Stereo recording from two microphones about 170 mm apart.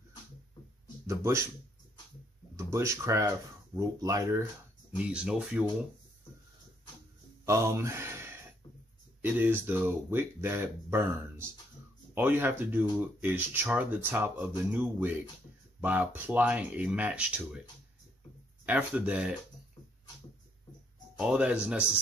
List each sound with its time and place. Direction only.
1.0 s speech: 15° right (ahead or behind)
2.5 s speech: 15° right (ahead or behind)
4.9 s speech: 5° right (ahead or behind)
7.4 s speech: 15° right (ahead or behind)
18.7 s speech: 10° right (ahead or behind)
21.2 s speech: 5° right (ahead or behind)